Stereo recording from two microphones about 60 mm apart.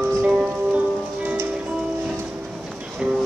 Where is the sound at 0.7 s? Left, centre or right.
Right.